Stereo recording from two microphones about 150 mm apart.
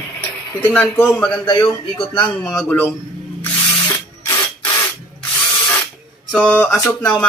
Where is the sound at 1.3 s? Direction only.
30° left (ahead or behind).